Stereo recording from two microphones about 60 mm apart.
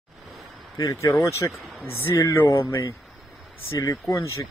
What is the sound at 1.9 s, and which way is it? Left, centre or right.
Speech, left.